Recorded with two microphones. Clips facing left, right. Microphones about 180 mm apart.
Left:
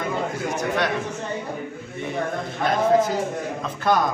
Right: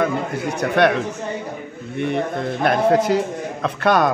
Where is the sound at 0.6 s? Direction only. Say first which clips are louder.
Right 8 dB; 65° right (ahead or behind).